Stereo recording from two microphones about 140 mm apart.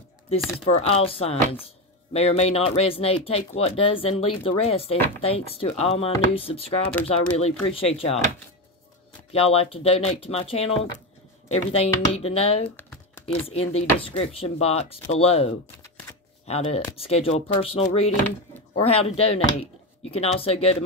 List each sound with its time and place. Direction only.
0.7 s speech: 45° left (ahead or behind)
9.3 s speech: 45° left (ahead or behind)